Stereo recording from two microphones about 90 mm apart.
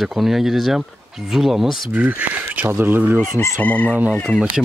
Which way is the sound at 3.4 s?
30° left (ahead or behind).